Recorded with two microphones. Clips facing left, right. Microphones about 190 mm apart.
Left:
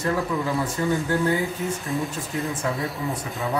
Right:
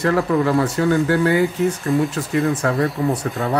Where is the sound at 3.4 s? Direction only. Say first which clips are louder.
Right 4 dB; 80° right.